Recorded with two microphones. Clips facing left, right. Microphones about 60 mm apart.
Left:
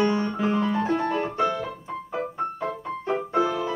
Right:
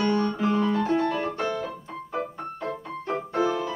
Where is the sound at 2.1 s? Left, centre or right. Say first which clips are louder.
Left 3 dB; centre.